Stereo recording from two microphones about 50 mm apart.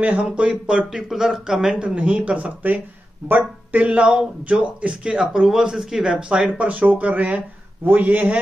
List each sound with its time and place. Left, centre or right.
0.2 s speech: centre; by 3.8 s right
3.8 s a man's voice: right